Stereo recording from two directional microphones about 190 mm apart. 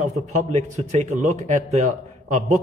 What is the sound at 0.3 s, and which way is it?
A man's voice, 40° right (ahead or behind).